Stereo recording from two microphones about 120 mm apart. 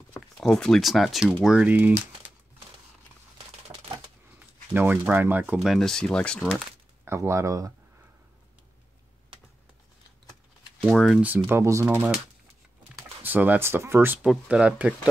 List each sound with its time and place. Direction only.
0.4 s speech: 5° left (ahead or behind); by 2.3 s 15° right (ahead or behind)
4.7 s speech: 15° right (ahead or behind)
5.6 s speech: centre (ahead or behind)
7.1 s speech: 25° right (ahead or behind)
10.8 s speech: 5° right (ahead or behind); by 12.0 s 20° right (ahead or behind)
13.2 s speech: 15° right (ahead or behind)